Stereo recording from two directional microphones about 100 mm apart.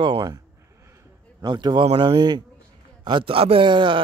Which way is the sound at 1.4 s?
45° right (ahead or behind).